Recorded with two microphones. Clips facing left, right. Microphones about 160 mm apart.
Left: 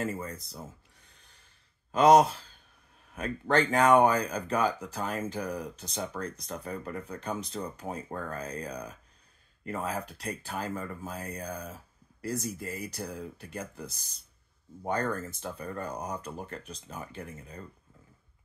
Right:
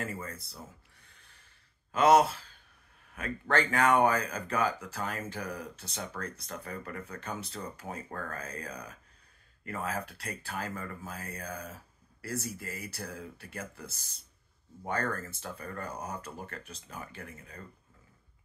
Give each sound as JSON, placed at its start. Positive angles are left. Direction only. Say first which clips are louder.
{"t": 0.0, "sound": "speech", "louder": "left 4 dB", "side_deg": 20}
{"t": 2.0, "sound": "speech", "louder": "left 3 dB", "side_deg": 20}